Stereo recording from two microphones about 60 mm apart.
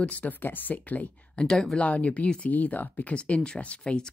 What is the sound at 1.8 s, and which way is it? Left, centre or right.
Speech, left.